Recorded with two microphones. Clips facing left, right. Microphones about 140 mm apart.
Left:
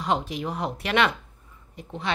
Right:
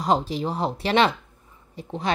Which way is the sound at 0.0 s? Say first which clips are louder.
Right 4 dB; 35° right (ahead or behind).